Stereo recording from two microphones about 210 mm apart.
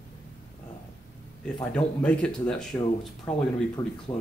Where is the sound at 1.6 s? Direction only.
5° left (ahead or behind).